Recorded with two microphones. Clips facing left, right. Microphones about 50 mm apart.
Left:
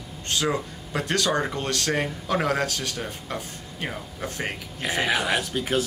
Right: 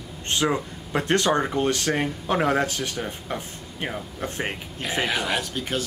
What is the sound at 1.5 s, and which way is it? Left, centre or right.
Speech, centre.